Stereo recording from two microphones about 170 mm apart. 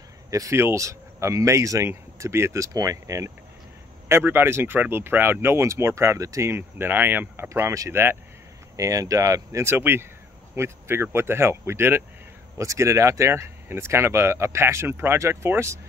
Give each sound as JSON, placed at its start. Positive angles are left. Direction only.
{"t": 0.3, "sound": "speech", "side_deg": -20}